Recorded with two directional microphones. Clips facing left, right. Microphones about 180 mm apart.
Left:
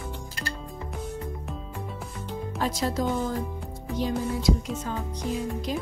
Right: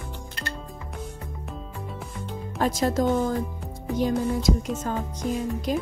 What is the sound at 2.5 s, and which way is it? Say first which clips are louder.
Speech: right 5 dB; 50° right (ahead or behind).